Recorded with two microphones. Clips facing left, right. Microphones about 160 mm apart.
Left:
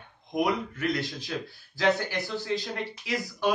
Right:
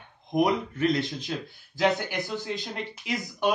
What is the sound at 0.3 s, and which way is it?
Speech, 25° right (ahead or behind).